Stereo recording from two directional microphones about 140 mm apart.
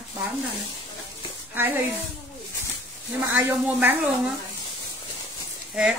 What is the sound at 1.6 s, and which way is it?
Speech, 15° right (ahead or behind).